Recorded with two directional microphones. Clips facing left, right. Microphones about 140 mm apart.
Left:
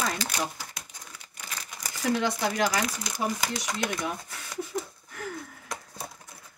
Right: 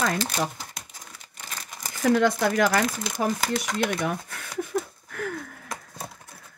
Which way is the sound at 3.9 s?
55° right (ahead or behind).